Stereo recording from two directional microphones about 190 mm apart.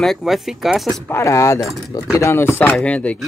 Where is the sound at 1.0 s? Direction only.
15° left (ahead or behind).